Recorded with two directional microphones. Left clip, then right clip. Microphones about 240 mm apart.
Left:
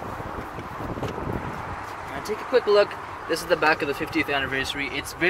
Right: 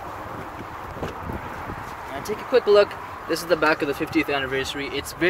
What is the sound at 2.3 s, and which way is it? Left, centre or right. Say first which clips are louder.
Speech: right 2 dB; right.